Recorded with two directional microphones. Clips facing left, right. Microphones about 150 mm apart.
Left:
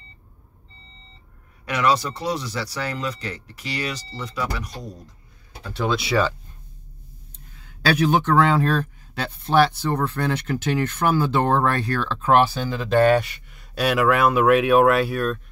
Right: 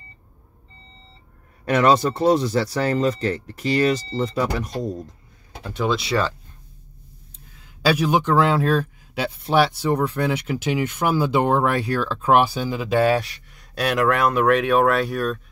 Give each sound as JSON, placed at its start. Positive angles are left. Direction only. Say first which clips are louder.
{"t": 1.7, "sound": "speech", "louder": "right 4 dB", "side_deg": -50}
{"t": 5.6, "sound": "speech", "louder": "right 1 dB", "side_deg": -15}
{"t": 5.9, "sound": "speech", "louder": "left 1 dB", "side_deg": 0}
{"t": 7.6, "sound": "speech", "louder": "even", "side_deg": -5}